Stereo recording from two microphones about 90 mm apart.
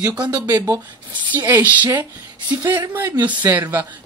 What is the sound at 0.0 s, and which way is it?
Speech, 15° right (ahead or behind).